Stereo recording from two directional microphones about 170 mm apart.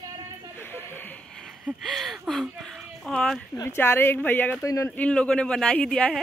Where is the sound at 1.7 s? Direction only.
Centre (ahead or behind).